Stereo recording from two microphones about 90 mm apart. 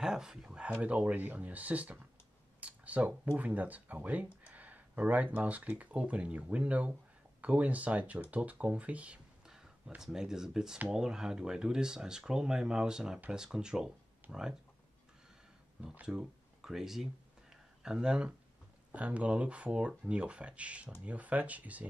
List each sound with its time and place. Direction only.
0.0 s speech: 5° right (ahead or behind)
0.7 s speech: 15° right (ahead or behind)
15.8 s speech: 15° right (ahead or behind)